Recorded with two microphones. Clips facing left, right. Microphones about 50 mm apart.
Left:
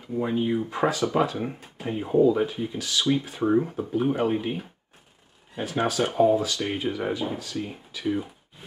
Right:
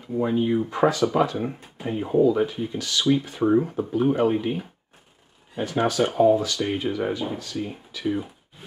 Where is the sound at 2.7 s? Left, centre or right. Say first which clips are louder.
Right 1 dB; centre.